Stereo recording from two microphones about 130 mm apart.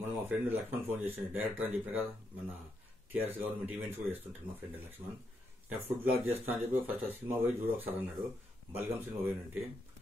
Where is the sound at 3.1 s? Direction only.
15° right (ahead or behind).